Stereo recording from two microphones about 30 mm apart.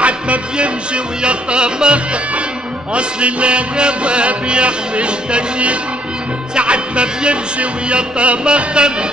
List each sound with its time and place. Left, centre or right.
0.0 s music: right